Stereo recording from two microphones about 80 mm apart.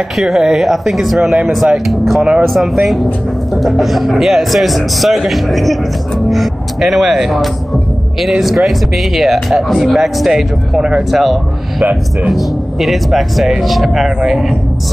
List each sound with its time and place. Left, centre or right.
0.2 s speech: centre
11.8 s a man's voice: centre
12.3 s speech: centre